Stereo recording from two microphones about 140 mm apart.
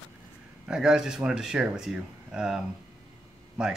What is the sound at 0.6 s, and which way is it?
Speech, 5° right (ahead or behind).